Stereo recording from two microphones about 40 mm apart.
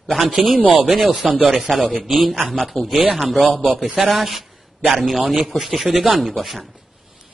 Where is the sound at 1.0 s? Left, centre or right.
Right.